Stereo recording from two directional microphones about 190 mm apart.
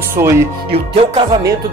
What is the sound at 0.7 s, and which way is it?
Music, 30° right (ahead or behind).